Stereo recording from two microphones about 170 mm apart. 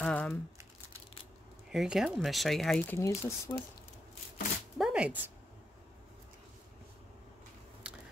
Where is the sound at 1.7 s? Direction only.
5° right (ahead or behind).